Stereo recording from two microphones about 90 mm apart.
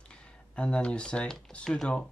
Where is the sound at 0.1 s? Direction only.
10° left (ahead or behind).